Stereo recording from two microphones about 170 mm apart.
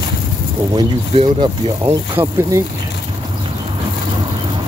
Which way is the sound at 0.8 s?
25° right (ahead or behind).